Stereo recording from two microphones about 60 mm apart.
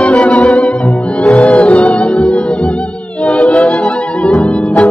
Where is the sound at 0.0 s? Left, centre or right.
Centre.